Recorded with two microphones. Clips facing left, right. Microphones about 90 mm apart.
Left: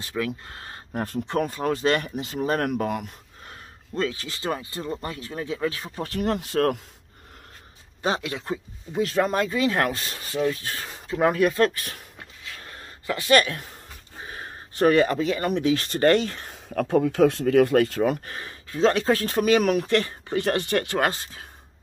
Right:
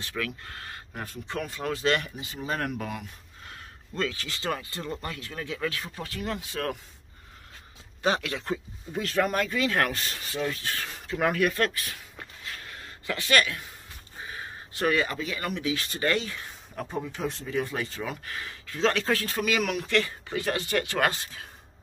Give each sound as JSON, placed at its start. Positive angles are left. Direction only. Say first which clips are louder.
{"t": 0.0, "sound": "speech", "louder": "left 5 dB", "side_deg": 20}
{"t": 1.4, "sound": "speech", "louder": "left 3 dB", "side_deg": 40}
{"t": 2.2, "sound": "speech", "louder": "left 6 dB", "side_deg": 50}
{"t": 3.4, "sound": "speech", "louder": "left 1 dB", "side_deg": 30}
{"t": 6.0, "sound": "speech", "louder": "left 10 dB", "side_deg": 50}
{"t": 8.0, "sound": "speech", "louder": "left 1 dB", "side_deg": 25}
{"t": 12.6, "sound": "a sound", "louder": "left 5 dB", "side_deg": 30}
{"t": 14.2, "sound": "speech", "louder": "left 1 dB", "side_deg": 40}
{"t": 16.7, "sound": "speech", "louder": "left 12 dB", "side_deg": 70}
{"t": 18.2, "sound": "speech", "louder": "left 1 dB", "side_deg": 35}
{"t": 20.3, "sound": "speech", "louder": "left 5 dB", "side_deg": 50}
{"t": 21.0, "sound": "speech", "louder": "left 2 dB", "side_deg": 30}